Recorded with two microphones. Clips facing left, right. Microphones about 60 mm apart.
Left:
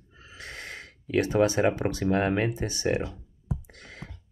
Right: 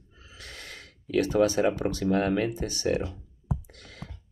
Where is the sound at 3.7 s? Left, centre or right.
Left.